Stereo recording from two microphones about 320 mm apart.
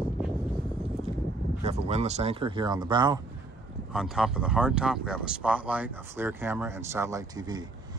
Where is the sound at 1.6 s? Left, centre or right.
Centre.